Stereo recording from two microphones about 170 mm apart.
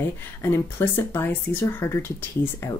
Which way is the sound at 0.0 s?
15° left (ahead or behind).